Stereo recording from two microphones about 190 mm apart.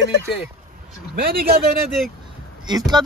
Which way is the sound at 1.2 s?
50° right (ahead or behind).